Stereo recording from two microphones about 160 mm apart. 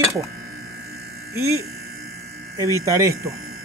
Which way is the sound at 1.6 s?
75° right (ahead or behind).